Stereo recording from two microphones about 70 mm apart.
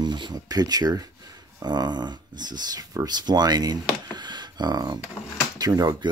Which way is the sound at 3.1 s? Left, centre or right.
Right.